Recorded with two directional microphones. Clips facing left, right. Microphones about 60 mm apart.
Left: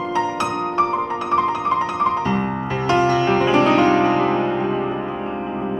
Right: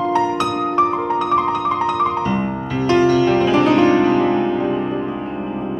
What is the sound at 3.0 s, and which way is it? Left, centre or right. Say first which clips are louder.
Music: right 3 dB; left.